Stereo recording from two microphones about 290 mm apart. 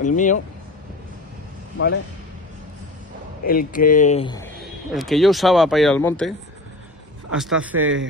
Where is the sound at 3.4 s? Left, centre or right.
Left.